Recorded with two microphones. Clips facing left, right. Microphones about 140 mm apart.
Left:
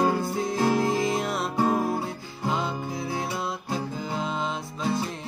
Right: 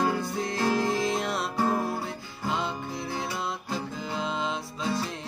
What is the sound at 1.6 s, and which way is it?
Music, 20° left (ahead or behind).